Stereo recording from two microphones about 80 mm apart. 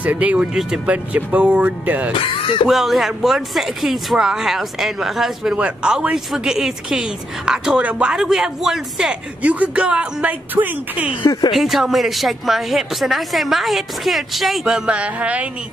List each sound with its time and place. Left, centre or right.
0.0 s speech: centre
2.1 s speech: left
2.7 s speech: centre
11.5 s speech: centre